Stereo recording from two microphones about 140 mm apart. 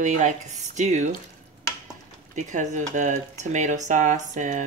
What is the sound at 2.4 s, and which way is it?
Speech, 60° right (ahead or behind).